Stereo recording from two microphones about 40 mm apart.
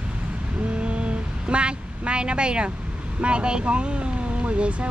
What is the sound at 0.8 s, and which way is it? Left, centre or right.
A woman's voice, right.